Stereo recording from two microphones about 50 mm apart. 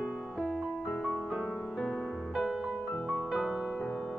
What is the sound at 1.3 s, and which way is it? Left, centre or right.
Music, centre.